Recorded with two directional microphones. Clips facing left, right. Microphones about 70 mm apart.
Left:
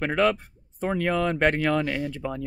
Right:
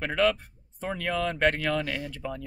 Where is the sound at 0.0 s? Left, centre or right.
Left.